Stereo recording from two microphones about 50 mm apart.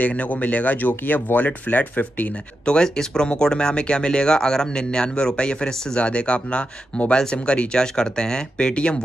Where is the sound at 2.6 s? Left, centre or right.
Centre.